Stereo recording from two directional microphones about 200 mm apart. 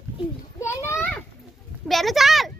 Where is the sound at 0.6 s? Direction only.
15° left (ahead or behind).